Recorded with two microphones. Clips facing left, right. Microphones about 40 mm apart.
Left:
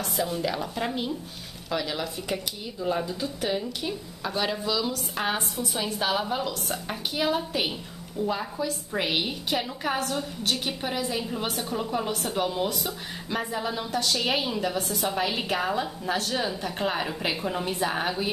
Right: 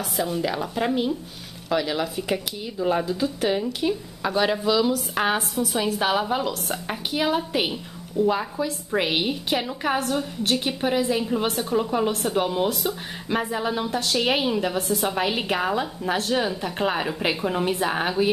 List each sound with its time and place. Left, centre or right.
0.0 s a woman's voice: centre
5.6 s a woman's voice: centre
5.9 s a woman's voice: centre